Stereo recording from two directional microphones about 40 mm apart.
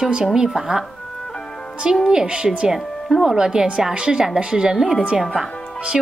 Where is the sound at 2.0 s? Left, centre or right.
Right.